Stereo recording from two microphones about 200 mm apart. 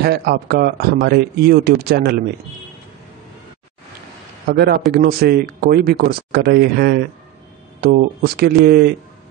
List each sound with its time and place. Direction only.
0.0 s speech: 50° right (ahead or behind)
4.5 s speech: 55° right (ahead or behind)